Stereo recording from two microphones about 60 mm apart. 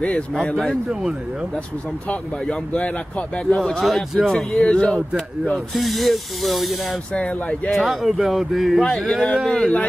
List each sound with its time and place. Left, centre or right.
0.6 s speech: centre
2.4 s a man's voice: centre
4.5 s a man's voice: centre
5.5 s speech: centre
7.2 s speech: left
7.7 s a man's voice: centre